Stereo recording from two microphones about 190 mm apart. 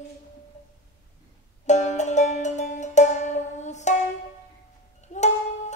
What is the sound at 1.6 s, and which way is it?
Music, 40° left (ahead or behind).